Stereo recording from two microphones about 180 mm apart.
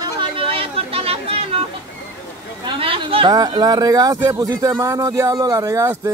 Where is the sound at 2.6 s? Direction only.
30° right (ahead or behind).